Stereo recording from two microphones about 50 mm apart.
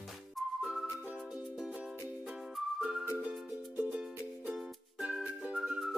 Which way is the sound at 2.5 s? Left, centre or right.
Centre.